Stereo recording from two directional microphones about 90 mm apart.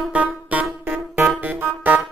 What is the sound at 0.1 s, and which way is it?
Music, 15° right (ahead or behind).